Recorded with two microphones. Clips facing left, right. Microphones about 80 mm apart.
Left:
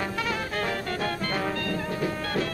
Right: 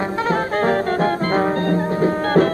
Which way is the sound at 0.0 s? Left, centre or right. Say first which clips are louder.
Right 9 dB; right.